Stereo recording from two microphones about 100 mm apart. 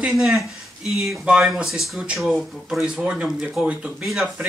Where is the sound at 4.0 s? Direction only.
Centre (ahead or behind).